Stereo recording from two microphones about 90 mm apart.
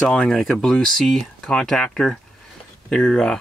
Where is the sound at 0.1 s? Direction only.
10° left (ahead or behind).